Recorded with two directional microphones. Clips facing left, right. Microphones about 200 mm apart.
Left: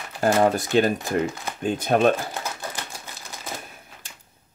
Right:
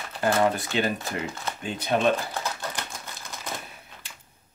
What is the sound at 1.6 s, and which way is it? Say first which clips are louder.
Speech: left 5 dB; 50° left (ahead or behind).